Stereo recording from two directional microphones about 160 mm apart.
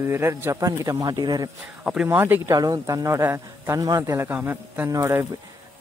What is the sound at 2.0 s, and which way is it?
Speech, 15° right (ahead or behind).